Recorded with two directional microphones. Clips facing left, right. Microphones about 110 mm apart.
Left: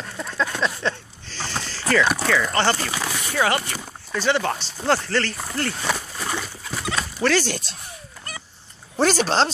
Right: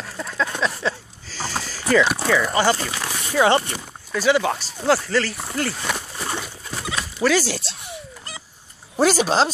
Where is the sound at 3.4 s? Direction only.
25° right (ahead or behind).